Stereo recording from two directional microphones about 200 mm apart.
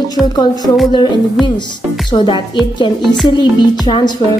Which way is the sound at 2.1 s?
25° left (ahead or behind).